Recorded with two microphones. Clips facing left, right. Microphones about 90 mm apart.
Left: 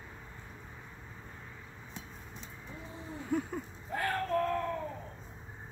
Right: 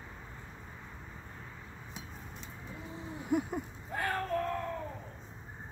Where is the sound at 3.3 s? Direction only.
15° right (ahead or behind).